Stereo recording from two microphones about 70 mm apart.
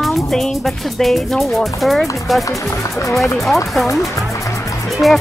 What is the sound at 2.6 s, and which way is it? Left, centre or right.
Speech, left.